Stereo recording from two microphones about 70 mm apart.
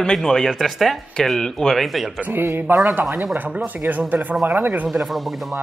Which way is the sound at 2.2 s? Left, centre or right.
Right.